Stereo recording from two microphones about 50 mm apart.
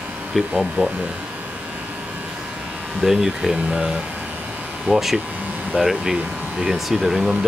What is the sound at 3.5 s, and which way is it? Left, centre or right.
Speech, centre.